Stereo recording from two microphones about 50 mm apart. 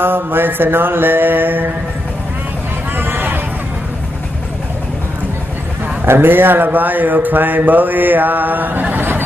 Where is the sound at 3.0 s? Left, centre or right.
Right.